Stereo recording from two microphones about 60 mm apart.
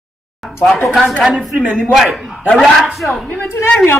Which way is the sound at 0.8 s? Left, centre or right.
Centre.